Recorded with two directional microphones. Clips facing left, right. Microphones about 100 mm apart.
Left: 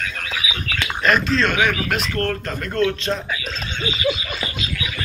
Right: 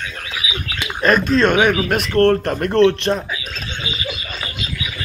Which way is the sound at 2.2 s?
60° right (ahead or behind).